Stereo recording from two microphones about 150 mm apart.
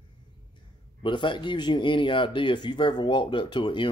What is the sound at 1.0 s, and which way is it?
Speech, 35° left (ahead or behind).